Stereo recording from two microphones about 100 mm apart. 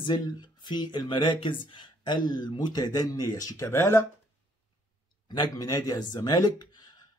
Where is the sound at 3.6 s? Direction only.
25° left (ahead or behind).